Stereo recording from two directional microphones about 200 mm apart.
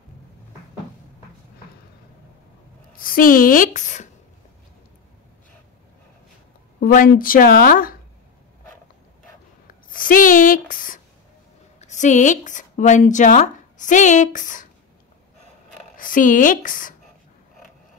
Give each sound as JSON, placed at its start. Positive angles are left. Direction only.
{"t": 3.0, "sound": "speech", "side_deg": 45}
{"t": 6.8, "sound": "speech", "side_deg": 45}
{"t": 9.8, "sound": "a woman's voice", "side_deg": 45}
{"t": 16.0, "sound": "speech", "side_deg": 40}